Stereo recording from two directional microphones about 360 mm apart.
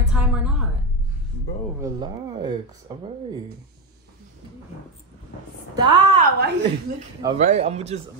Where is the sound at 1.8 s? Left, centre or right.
Centre.